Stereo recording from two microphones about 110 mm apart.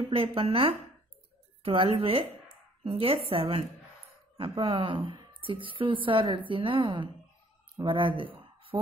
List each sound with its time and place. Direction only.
0.1 s speech: 60° right (ahead or behind)